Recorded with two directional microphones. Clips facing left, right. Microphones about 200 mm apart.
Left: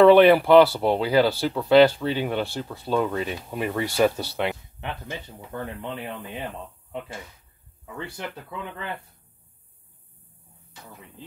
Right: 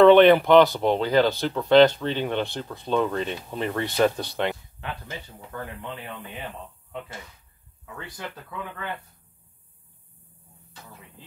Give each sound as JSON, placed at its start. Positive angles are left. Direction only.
{"t": 0.0, "sound": "speech", "side_deg": 5}
{"t": 4.8, "sound": "speech", "side_deg": 20}
{"t": 7.8, "sound": "speech", "side_deg": 25}